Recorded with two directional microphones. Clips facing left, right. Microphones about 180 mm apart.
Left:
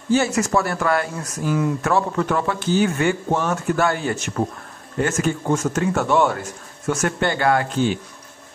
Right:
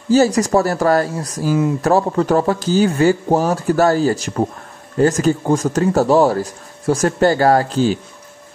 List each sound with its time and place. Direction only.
0.1 s speech: 35° right (ahead or behind)